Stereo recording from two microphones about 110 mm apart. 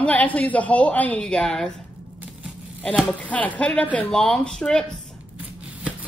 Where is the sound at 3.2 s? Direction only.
15° left (ahead or behind).